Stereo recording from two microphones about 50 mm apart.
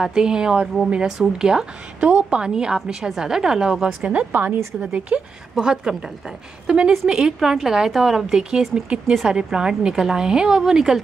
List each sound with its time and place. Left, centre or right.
0.0 s a woman's voice: centre
2.0 s a woman's voice: right
4.1 s a woman's voice: right
4.7 s a woman's voice: right
7.1 s a woman's voice: centre